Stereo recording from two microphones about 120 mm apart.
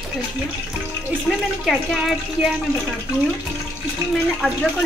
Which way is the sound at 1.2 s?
Centre (ahead or behind).